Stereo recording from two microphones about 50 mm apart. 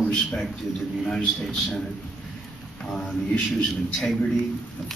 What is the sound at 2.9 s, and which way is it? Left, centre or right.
Speech, centre.